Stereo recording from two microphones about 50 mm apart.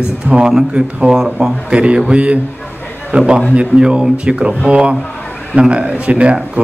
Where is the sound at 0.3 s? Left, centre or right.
Right.